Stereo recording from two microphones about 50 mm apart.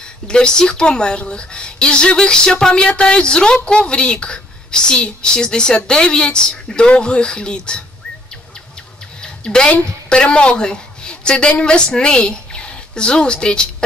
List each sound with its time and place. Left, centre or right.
0.3 s a woman's voice: centre
9.2 s a woman's voice: centre